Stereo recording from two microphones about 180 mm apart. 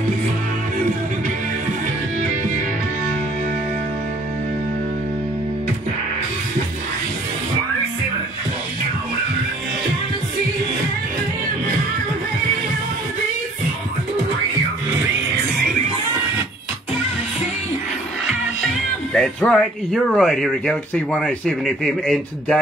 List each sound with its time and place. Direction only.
19.1 s speech: 5° left (ahead or behind)